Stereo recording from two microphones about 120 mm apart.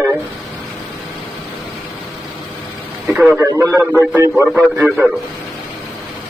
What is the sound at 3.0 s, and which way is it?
Speech, 5° right (ahead or behind).